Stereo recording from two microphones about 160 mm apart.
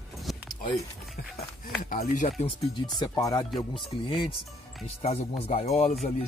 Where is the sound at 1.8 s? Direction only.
55° left (ahead or behind).